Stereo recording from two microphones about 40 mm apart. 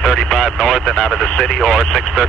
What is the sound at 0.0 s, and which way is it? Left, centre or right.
Speech, centre.